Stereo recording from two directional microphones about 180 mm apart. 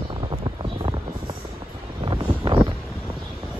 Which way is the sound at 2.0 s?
25° right (ahead or behind).